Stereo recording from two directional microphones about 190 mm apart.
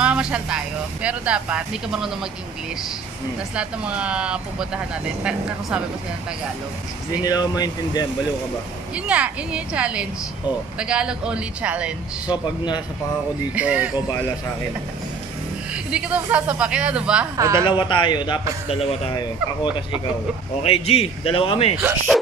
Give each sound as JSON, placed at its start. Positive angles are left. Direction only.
{"t": 0.0, "sound": "speech", "side_deg": -5}
{"t": 3.5, "sound": "speech", "side_deg": -5}
{"t": 7.2, "sound": "speech", "side_deg": 20}
{"t": 8.9, "sound": "speech", "side_deg": -5}
{"t": 13.6, "sound": "speech", "side_deg": -5}
{"t": 15.7, "sound": "speech", "side_deg": -5}
{"t": 17.6, "sound": "a man's voice", "side_deg": 25}
{"t": 21.8, "sound": "speech", "side_deg": 0}